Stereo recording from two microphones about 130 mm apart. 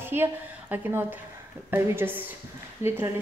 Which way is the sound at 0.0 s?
15° right (ahead or behind).